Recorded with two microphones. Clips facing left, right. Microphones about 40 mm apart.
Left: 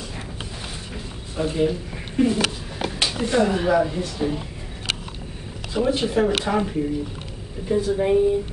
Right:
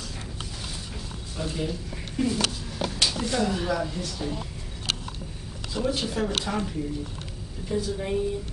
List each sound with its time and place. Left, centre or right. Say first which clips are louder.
1.3 s speech: left 9 dB; left
5.8 s speech: left 7 dB; left